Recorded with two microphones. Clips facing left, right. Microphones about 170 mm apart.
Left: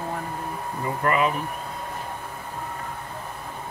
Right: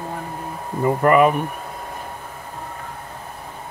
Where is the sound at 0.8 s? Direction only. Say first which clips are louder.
Right 9 dB; 55° right (ahead or behind).